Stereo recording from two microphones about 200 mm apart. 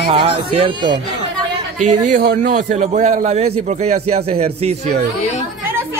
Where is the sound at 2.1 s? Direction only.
40° right (ahead or behind).